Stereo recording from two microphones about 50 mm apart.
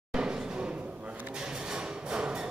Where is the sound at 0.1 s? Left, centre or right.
Centre.